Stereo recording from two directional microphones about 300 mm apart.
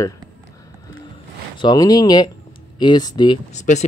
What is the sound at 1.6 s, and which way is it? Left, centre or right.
Speech, centre.